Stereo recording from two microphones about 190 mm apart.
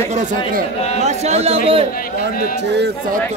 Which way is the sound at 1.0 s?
35° right (ahead or behind).